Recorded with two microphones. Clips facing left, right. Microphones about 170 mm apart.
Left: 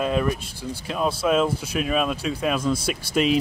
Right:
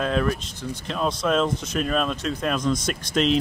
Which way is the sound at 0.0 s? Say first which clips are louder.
Even; 5° left (ahead or behind).